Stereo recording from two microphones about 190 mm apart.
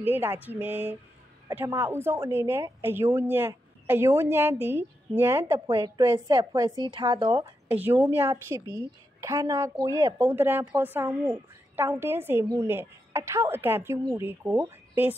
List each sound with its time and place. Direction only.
0.0 s a woman's voice: 10° right (ahead or behind)
5.5 s a woman's voice: 25° right (ahead or behind)
7.6 s a woman's voice: 10° right (ahead or behind)